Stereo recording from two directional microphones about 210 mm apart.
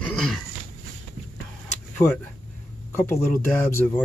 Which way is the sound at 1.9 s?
10° left (ahead or behind).